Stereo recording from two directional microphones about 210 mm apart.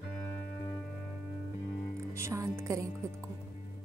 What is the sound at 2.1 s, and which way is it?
Music, 15° right (ahead or behind).